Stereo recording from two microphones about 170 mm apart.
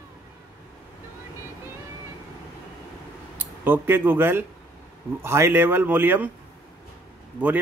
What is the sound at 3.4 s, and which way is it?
Speech, 10° right (ahead or behind).